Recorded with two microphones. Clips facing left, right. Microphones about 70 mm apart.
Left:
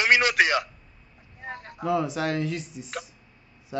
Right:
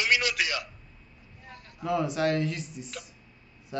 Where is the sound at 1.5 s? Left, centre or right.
Left.